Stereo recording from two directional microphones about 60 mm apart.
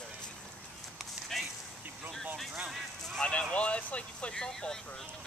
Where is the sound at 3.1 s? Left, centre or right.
Centre.